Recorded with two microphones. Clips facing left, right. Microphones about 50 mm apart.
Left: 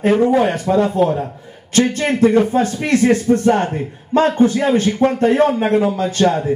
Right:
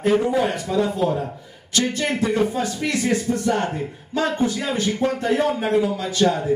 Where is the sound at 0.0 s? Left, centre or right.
Left.